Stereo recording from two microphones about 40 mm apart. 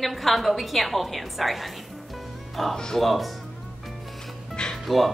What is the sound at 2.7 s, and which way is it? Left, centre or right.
Speech, centre.